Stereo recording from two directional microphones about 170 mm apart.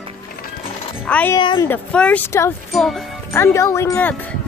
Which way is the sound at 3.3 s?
15° left (ahead or behind).